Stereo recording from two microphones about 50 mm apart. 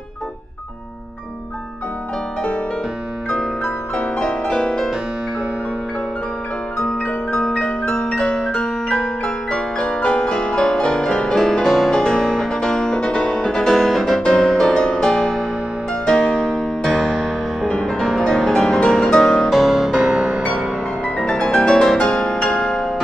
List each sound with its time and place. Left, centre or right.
3.3 s music: centre
6.8 s music: centre
13.3 s music: centre
16.9 s music: centre
17.6 s music: centre
19.5 s music: centre
19.9 s music: centre
20.5 s music: centre